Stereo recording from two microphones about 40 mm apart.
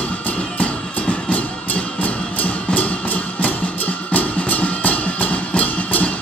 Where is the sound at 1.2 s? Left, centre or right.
Left.